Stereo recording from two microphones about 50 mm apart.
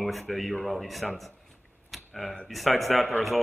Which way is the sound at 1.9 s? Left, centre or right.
Centre.